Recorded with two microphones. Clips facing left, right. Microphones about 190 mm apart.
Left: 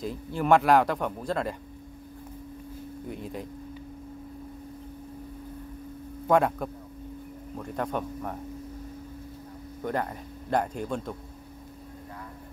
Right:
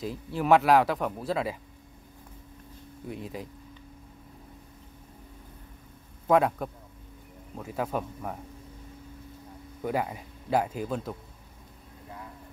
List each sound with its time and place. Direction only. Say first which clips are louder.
0.0 s speech: left 1 dB; centre (ahead or behind)
3.1 s speech: even; centre (ahead or behind)
6.2 s speech: even; centre (ahead or behind)
9.8 s speech: right 1 dB; 5° right (ahead or behind)